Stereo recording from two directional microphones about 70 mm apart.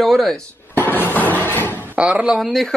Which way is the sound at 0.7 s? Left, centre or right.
Left.